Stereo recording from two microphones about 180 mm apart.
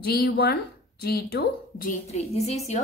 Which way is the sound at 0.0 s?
60° left (ahead or behind).